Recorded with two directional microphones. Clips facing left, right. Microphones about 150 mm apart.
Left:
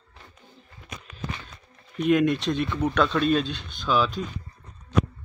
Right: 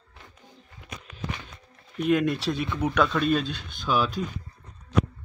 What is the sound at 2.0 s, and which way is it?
Speech, centre (ahead or behind).